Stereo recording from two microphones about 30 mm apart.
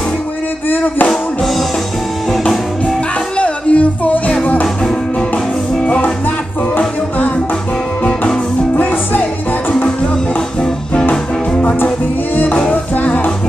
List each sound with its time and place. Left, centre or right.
0.7 s music: left
3.3 s music: left
12.9 s music: left